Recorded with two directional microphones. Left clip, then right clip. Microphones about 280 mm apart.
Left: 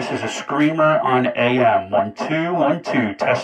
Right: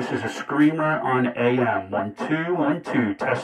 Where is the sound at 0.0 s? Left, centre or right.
Left.